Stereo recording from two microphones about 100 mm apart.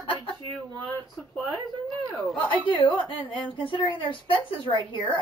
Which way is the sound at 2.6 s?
55° left (ahead or behind).